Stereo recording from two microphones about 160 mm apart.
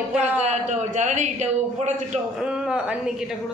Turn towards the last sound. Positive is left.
turn(degrees=-5)  # may be behind; listen again after turning